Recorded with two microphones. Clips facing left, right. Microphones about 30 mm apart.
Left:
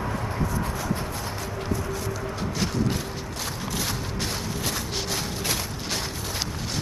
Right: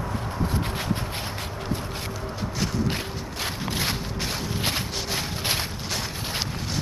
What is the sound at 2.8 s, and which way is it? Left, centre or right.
Mechanisms, right.